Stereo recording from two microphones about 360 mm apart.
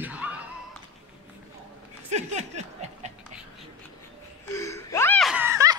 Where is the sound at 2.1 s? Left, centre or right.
Centre.